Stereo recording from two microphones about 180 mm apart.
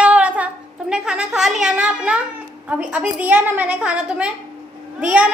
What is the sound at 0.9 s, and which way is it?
A woman's voice, 5° right (ahead or behind).